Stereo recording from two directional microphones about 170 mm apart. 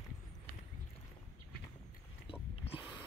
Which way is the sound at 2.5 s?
35° left (ahead or behind).